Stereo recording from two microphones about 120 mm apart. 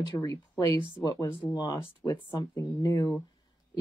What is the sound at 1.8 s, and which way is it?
Speech, 20° left (ahead or behind).